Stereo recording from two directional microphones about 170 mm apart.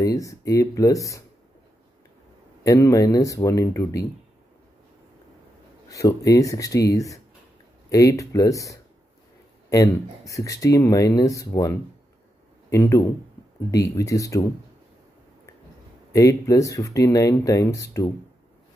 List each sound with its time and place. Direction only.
0.0 s speech: 20° left (ahead or behind)
2.6 s speech: 20° left (ahead or behind)
5.9 s speech: 20° left (ahead or behind)
16.1 s speech: 20° left (ahead or behind)